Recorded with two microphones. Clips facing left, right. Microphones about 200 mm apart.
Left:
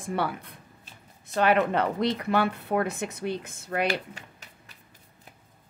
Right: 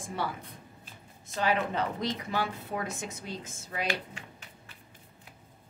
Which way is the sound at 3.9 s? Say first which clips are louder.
Left 4 dB; 40° left (ahead or behind).